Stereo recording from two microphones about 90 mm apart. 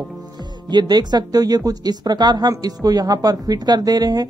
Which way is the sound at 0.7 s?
50° right (ahead or behind).